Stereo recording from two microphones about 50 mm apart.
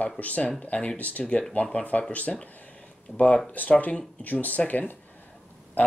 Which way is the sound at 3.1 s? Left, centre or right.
Left.